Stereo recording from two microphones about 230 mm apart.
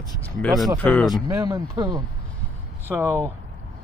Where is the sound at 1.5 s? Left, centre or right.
Centre.